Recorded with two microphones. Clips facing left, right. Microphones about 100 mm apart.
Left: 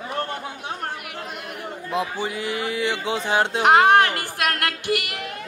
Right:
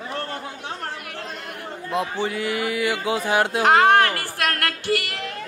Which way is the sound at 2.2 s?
20° left (ahead or behind).